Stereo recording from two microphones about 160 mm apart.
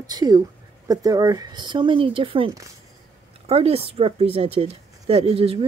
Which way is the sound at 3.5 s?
40° right (ahead or behind).